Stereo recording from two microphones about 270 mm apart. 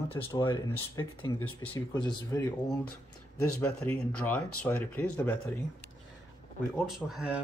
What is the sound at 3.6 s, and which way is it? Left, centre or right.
Speech, centre.